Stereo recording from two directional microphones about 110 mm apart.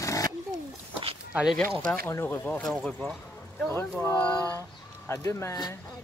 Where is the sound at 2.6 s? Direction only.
Centre (ahead or behind).